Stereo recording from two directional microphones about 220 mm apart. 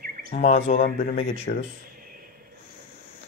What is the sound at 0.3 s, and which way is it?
Speech, 30° left (ahead or behind).